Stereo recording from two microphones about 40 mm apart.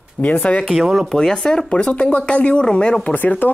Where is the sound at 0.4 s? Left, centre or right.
Left.